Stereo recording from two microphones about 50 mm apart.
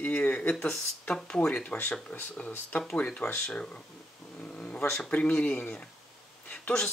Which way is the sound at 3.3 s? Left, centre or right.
Left.